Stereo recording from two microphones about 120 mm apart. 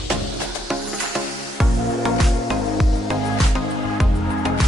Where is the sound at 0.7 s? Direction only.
Centre (ahead or behind).